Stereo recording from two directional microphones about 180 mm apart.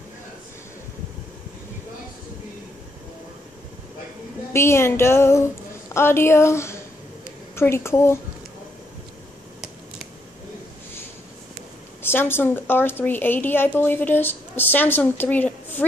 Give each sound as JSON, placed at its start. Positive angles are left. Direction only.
{"t": 4.5, "sound": "a woman's voice", "side_deg": 15}
{"t": 12.0, "sound": "a woman's voice", "side_deg": 10}